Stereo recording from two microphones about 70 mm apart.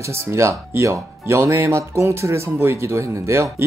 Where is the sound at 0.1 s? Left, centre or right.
Right.